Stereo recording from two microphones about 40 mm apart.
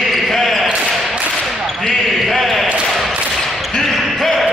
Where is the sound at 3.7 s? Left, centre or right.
Centre.